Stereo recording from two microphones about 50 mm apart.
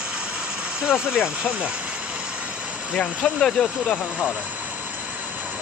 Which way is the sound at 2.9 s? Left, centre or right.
Centre.